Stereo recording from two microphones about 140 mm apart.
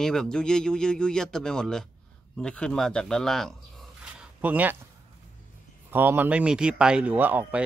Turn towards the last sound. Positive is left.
turn(degrees=-15)  # may be behind; listen again after turning